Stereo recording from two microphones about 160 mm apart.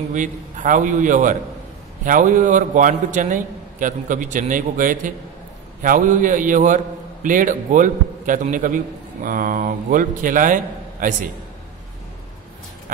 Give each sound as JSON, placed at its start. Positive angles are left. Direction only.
{"t": 0.1, "sound": "a man's voice", "side_deg": -50}